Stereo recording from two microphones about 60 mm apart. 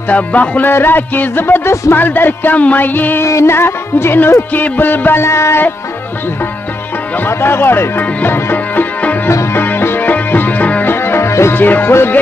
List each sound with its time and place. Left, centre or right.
0.1 s music: left
3.3 s music: left
7.2 s music: left
10.9 s music: left
11.5 s music: left